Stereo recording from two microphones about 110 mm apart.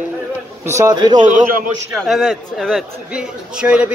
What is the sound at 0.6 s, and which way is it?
Speech, 25° right (ahead or behind).